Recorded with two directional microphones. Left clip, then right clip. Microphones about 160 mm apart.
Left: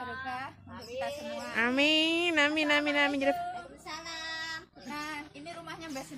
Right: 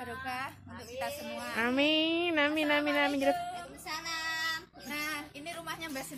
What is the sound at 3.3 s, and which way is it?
Speech, 5° right (ahead or behind).